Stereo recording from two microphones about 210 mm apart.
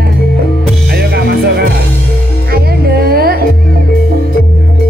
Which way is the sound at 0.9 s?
50° right (ahead or behind).